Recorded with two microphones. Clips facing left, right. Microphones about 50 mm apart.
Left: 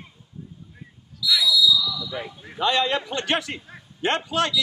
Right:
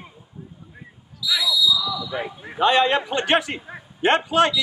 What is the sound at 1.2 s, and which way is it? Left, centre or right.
Basketball bounce, centre.